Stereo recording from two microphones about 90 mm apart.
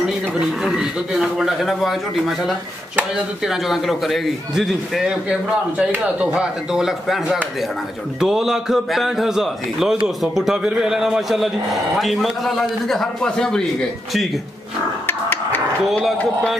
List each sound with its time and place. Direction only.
0.6 s a man's voice: 5° right (ahead or behind)
15.0 s music: 25° left (ahead or behind)
15.8 s a man's voice: centre (ahead or behind)